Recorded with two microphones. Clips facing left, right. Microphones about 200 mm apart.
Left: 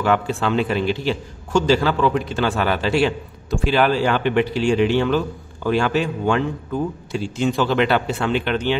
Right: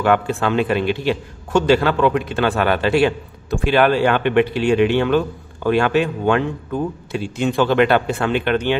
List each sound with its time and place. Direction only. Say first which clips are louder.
0.0 s a man's voice: right 2 dB; 55° right (ahead or behind)